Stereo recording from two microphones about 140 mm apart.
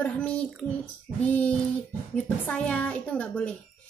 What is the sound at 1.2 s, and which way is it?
A woman's voice, 10° left (ahead or behind).